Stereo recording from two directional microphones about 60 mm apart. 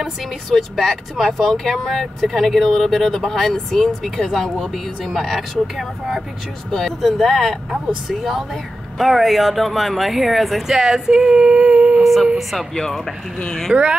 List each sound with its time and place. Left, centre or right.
0.6 s speech: centre
10.8 s speech: centre
12.0 s speech: centre
13.7 s speech: right